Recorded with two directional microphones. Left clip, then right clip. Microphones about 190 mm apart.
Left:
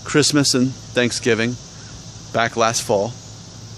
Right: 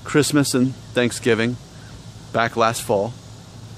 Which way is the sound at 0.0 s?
Centre (ahead or behind).